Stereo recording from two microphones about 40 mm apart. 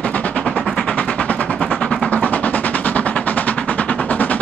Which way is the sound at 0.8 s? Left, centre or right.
Left.